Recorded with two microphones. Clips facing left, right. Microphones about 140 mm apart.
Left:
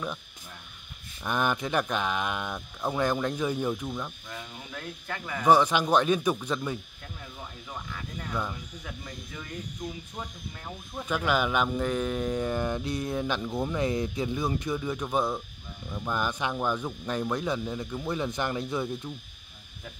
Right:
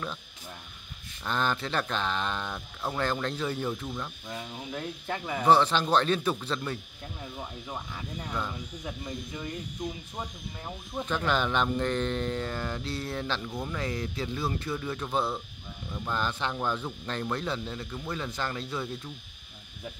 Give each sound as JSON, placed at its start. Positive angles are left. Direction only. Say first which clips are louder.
{"t": 1.2, "sound": "speech", "louder": "left 2 dB", "side_deg": 15}
{"t": 4.3, "sound": "speech", "louder": "right 4 dB", "side_deg": -20}
{"t": 5.5, "sound": "speech", "louder": "left 1 dB", "side_deg": 10}
{"t": 7.6, "sound": "speech", "louder": "right 1 dB", "side_deg": -20}
{"t": 11.1, "sound": "speech", "louder": "left 2 dB", "side_deg": 10}